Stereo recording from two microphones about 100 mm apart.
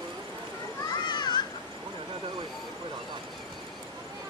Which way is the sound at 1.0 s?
45° left (ahead or behind).